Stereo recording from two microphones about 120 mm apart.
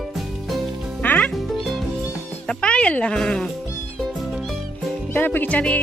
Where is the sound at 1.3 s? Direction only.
Centre (ahead or behind).